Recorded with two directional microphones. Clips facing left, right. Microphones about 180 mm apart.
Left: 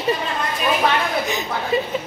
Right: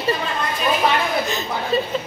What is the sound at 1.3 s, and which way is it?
Speech, 15° left (ahead or behind).